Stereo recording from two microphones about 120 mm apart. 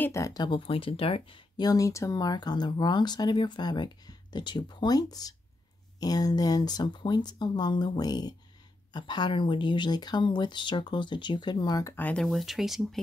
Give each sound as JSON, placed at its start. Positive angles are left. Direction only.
{"t": 0.0, "sound": "speech", "side_deg": 25}
{"t": 1.6, "sound": "speech", "side_deg": 30}
{"t": 11.9, "sound": "speech", "side_deg": 10}
{"t": 12.3, "sound": "speech", "side_deg": 0}